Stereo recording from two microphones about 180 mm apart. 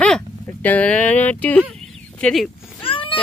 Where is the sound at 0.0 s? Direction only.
10° left (ahead or behind).